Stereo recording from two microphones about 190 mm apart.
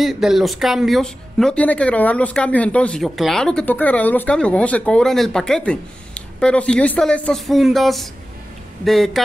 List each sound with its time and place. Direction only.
0.0 s speech: centre (ahead or behind)